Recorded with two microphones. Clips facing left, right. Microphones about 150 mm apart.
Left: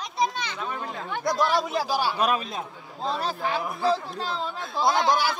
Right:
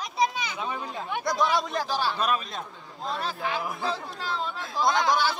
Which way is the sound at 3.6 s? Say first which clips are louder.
Left 6 dB; centre (ahead or behind).